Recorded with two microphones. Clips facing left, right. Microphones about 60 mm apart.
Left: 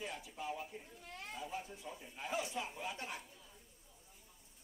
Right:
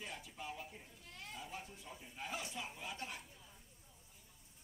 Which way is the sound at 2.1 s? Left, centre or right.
Centre.